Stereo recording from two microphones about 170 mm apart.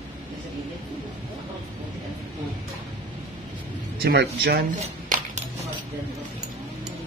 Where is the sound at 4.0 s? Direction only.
70° right (ahead or behind).